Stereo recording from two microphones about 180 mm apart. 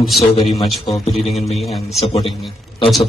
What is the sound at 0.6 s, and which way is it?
A man's voice, centre (ahead or behind).